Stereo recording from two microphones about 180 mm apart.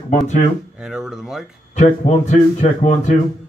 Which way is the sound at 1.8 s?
40° left (ahead or behind).